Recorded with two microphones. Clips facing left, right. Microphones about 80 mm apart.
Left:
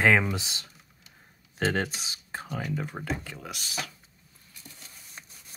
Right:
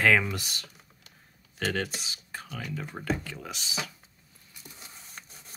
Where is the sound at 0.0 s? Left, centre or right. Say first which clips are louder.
Left 1 dB; centre.